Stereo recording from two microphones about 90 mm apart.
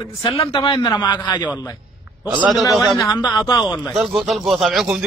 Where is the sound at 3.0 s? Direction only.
40° left (ahead or behind).